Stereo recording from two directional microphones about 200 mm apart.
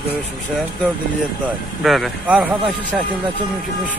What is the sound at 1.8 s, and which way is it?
Speech, centre (ahead or behind).